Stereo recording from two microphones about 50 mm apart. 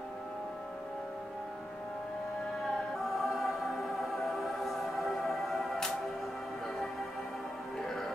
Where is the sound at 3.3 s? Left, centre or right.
Centre.